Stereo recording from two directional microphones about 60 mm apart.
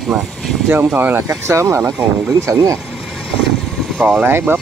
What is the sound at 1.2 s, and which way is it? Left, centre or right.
Speech, right.